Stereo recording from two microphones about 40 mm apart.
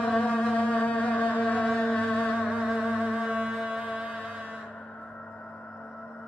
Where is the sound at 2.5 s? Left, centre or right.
Right.